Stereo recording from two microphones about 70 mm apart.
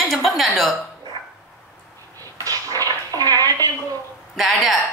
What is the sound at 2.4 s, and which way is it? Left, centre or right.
Dishes, right.